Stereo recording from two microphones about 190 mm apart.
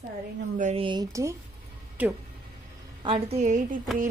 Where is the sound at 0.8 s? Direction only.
20° right (ahead or behind).